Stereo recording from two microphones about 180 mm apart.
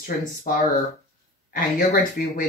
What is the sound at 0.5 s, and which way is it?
Speech, 50° left (ahead or behind).